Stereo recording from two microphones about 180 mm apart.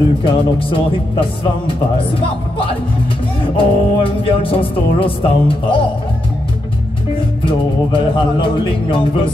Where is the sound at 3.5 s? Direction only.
30° left (ahead or behind).